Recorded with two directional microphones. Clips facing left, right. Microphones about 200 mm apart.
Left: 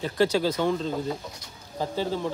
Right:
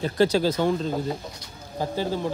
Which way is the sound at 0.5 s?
15° right (ahead or behind).